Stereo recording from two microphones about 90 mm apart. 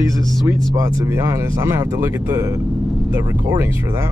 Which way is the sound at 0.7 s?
35° right (ahead or behind).